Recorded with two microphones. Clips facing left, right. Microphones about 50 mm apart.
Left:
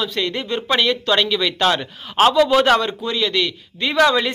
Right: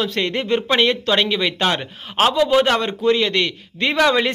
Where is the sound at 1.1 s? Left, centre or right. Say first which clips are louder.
Even; right.